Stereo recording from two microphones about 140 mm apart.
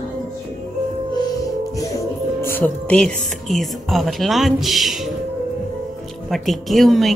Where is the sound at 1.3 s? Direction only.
25° left (ahead or behind).